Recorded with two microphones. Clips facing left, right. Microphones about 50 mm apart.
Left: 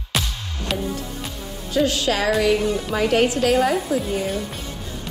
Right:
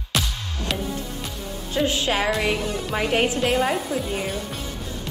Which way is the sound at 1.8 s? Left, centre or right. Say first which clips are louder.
Left 2 dB; right.